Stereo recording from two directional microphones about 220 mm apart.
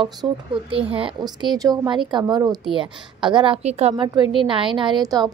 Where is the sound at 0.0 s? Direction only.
25° right (ahead or behind).